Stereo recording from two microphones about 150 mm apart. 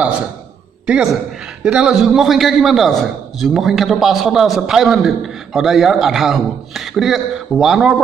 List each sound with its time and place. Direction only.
0.8 s a woman's voice: 5° right (ahead or behind)